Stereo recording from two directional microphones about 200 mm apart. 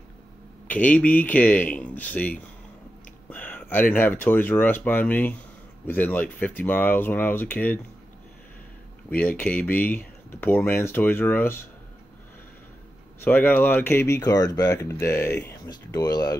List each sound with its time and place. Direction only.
0.7 s speech: 5° left (ahead or behind)
9.1 s speech: 10° left (ahead or behind)
13.2 s speech: 10° left (ahead or behind)